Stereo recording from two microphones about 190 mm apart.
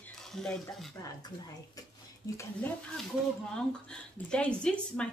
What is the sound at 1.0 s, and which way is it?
A woman's voice, 20° left (ahead or behind).